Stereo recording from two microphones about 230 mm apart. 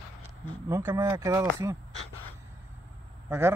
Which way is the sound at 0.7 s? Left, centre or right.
Centre.